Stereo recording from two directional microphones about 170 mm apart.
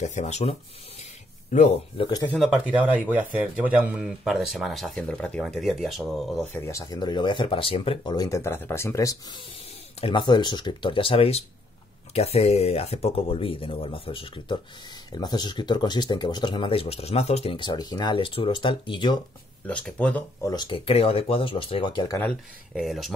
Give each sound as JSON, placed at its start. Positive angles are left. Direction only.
{"t": 0.0, "sound": "speech", "side_deg": 45}
{"t": 2.0, "sound": "speech", "side_deg": 25}
{"t": 2.2, "sound": "a man's voice", "side_deg": 0}
{"t": 6.4, "sound": "speech", "side_deg": 15}
{"t": 19.6, "sound": "speech", "side_deg": 5}
{"t": 20.4, "sound": "speech", "side_deg": 25}
{"t": 22.8, "sound": "a man's voice", "side_deg": 0}